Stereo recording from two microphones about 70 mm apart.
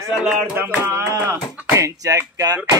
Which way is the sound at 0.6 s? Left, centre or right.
Right.